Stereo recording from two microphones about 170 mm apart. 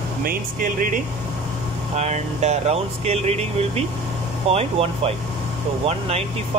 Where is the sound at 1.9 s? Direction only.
40° right (ahead or behind).